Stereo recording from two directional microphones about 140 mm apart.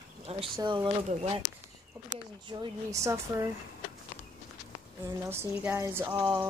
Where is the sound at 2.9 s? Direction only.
20° right (ahead or behind).